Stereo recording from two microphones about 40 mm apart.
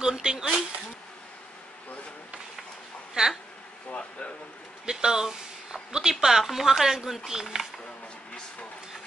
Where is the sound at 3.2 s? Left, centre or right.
Centre.